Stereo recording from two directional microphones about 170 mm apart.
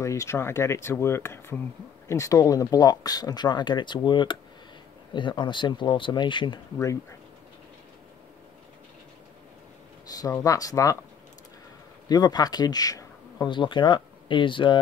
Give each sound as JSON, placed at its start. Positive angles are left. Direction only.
{"t": 0.0, "sound": "speech", "side_deg": 15}
{"t": 10.1, "sound": "speech", "side_deg": 20}
{"t": 12.1, "sound": "speech", "side_deg": 25}